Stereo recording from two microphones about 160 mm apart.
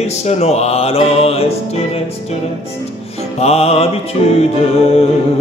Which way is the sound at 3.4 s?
40° left (ahead or behind).